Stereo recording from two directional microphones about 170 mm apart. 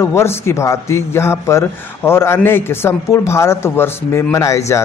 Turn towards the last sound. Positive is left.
turn(degrees=15)  # may be behind; listen again after turning